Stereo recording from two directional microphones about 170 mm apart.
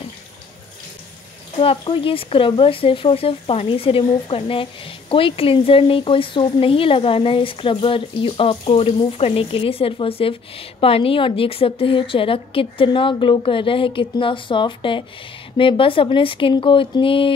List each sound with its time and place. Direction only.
1.6 s speech: 30° left (ahead or behind)